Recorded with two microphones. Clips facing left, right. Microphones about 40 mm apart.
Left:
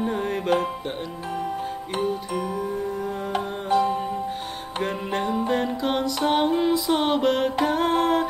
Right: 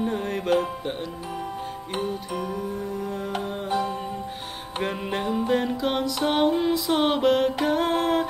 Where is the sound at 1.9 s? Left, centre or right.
Centre.